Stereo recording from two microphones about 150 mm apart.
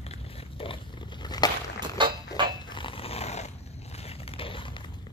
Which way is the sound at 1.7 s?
30° right (ahead or behind).